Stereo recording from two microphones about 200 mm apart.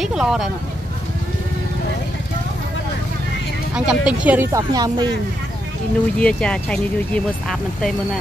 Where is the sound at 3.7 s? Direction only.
5° right (ahead or behind).